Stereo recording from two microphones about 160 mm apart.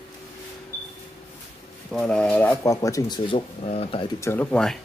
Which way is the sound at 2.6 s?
20° left (ahead or behind).